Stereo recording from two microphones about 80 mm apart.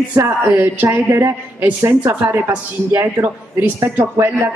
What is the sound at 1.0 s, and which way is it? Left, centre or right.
A woman's voice, right.